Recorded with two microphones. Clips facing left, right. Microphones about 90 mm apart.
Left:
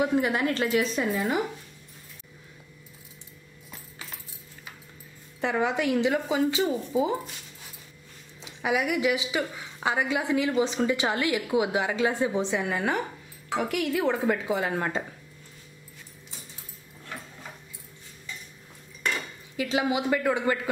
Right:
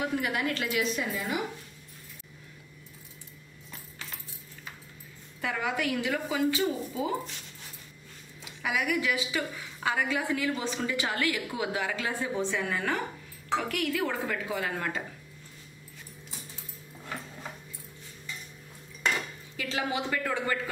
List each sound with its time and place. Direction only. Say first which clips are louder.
0.0 s a woman's voice: left 5 dB; 25° left (ahead or behind)
5.4 s a woman's voice: left 5 dB; 25° left (ahead or behind)
8.4 s a woman's voice: left 5 dB; 20° left (ahead or behind)
19.5 s a woman's voice: left 6 dB; 15° left (ahead or behind)